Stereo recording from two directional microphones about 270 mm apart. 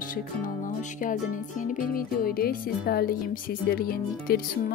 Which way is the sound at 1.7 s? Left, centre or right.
Left.